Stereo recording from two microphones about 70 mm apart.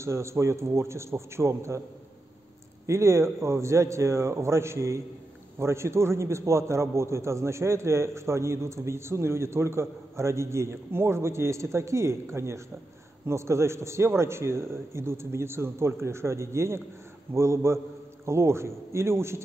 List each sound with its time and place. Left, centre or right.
0.0 s a man's voice: right
2.9 s a man's voice: right